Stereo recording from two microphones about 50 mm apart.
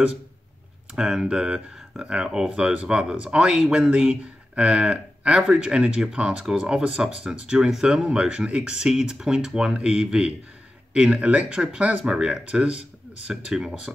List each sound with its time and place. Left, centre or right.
0.9 s speech: centre
13.3 s speech: centre